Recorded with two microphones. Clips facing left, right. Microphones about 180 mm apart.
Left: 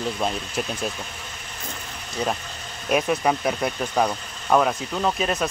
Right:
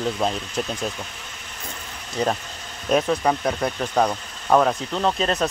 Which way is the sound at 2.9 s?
10° left (ahead or behind).